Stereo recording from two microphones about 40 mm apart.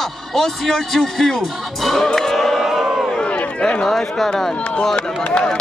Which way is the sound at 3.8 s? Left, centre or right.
Centre.